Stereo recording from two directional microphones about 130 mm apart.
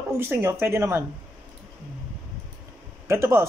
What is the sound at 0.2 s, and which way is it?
Speech, 20° right (ahead or behind).